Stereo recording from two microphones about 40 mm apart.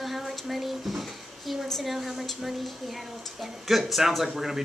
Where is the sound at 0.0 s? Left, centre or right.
Centre.